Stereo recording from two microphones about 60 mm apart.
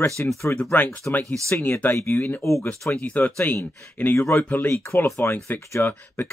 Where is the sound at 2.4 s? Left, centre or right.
Left.